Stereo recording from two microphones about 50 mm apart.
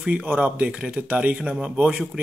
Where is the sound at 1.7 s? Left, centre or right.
Centre.